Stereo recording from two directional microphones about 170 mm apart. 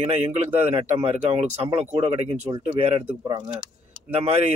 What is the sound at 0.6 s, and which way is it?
Speech, 35° right (ahead or behind).